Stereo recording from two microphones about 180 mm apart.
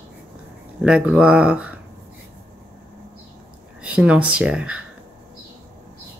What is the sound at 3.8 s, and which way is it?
Speech, 5° right (ahead or behind).